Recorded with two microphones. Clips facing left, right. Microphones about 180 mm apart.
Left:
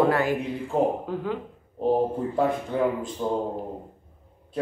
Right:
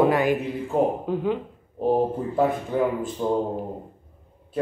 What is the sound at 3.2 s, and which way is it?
Speech, 5° right (ahead or behind).